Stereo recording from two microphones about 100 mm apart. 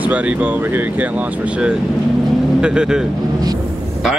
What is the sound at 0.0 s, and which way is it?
Speech, 15° right (ahead or behind).